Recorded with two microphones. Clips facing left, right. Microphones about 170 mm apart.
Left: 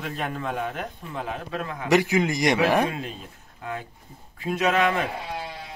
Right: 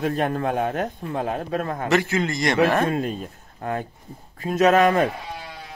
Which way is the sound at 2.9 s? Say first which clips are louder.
Right 8 dB; 45° right (ahead or behind).